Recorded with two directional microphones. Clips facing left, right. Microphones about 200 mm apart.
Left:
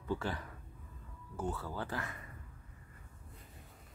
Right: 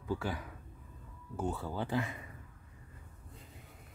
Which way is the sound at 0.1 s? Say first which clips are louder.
Right 1 dB; 10° right (ahead or behind).